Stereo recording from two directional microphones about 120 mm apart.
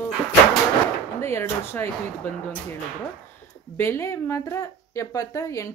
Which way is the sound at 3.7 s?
20° left (ahead or behind).